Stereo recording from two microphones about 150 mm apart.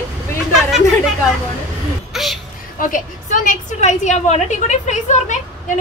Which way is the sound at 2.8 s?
60° left (ahead or behind).